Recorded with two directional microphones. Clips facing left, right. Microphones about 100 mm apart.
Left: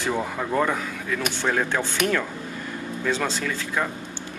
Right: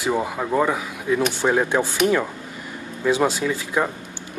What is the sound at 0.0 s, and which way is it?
Speech, 10° right (ahead or behind).